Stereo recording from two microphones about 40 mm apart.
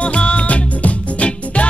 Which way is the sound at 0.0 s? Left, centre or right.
Left.